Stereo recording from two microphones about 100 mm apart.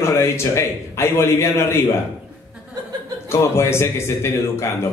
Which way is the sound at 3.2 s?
25° left (ahead or behind).